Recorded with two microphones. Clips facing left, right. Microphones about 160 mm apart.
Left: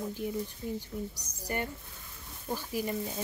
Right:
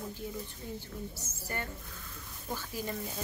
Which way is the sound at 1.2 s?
15° left (ahead or behind).